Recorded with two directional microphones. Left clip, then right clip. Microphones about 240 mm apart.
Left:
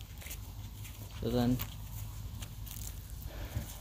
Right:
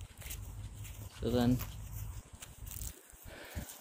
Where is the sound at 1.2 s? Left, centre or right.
Centre.